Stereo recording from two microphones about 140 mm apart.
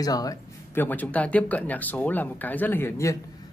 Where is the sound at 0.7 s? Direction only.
10° left (ahead or behind).